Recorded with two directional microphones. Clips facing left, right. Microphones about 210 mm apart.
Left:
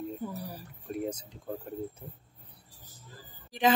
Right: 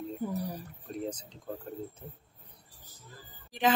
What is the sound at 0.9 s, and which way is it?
Speech, 10° left (ahead or behind).